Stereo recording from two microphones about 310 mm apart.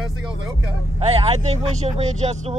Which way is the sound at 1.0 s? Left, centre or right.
Centre.